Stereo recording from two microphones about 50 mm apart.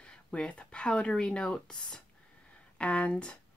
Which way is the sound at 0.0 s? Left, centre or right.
Left.